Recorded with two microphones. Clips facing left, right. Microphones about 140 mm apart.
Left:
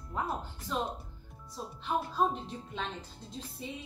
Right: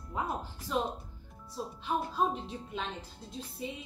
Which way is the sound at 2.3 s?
5° right (ahead or behind).